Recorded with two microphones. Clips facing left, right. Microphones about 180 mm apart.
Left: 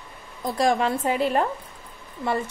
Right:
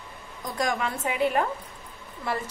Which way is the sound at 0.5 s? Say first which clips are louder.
Left 6 dB; 30° left (ahead or behind).